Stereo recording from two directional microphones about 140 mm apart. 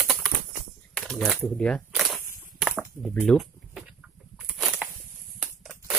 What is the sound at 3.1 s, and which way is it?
Speech, 10° left (ahead or behind).